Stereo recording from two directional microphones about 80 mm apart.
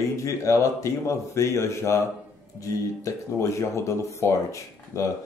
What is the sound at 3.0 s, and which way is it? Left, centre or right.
Speech, left.